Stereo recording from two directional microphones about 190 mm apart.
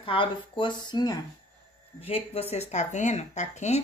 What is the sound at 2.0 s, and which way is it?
Speech, 30° left (ahead or behind).